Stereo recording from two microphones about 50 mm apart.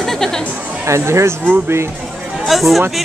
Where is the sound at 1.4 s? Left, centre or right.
Right.